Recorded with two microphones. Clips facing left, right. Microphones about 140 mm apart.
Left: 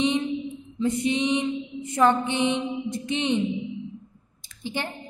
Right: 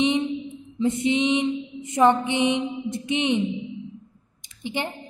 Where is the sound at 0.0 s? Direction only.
20° right (ahead or behind).